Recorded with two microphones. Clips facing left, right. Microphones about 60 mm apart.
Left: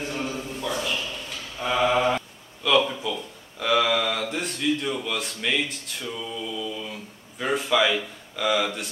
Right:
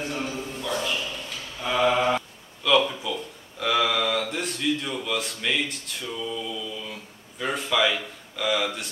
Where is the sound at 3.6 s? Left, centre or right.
Centre.